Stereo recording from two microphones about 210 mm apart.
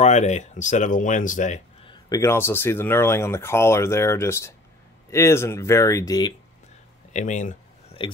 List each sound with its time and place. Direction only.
0.0 s speech: 35° left (ahead or behind)
1.9 s speech: 15° left (ahead or behind)
7.1 s a sound: 35° left (ahead or behind)